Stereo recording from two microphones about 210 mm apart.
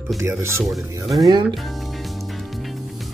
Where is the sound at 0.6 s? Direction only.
Centre (ahead or behind).